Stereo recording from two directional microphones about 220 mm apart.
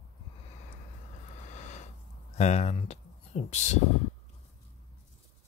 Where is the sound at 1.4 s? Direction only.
35° left (ahead or behind).